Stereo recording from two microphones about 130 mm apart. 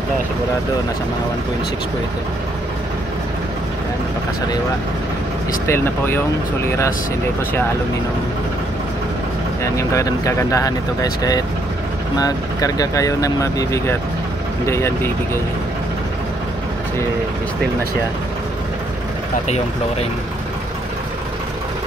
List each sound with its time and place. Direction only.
5.7 s speech: 15° left (ahead or behind)
9.8 s speech: 25° left (ahead or behind)